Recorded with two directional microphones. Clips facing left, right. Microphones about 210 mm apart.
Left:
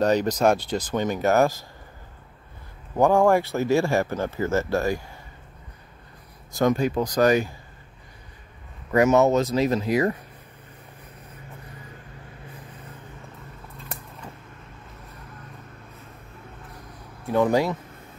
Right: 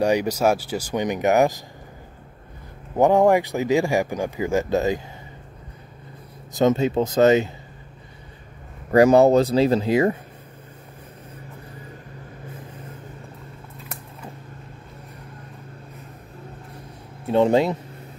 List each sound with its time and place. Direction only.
0.0 s speech: 10° right (ahead or behind)
3.0 s speech: 20° right (ahead or behind)
6.5 s speech: 25° right (ahead or behind)
8.9 s speech: 35° right (ahead or behind)
17.3 s speech: 25° right (ahead or behind)